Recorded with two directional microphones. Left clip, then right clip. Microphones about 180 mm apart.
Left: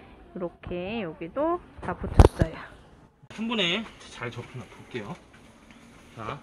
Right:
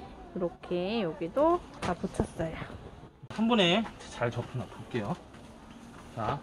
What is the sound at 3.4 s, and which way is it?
Speech, 55° right (ahead or behind).